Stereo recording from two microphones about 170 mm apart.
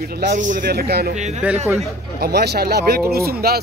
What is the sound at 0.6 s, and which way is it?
Speech, 70° right (ahead or behind).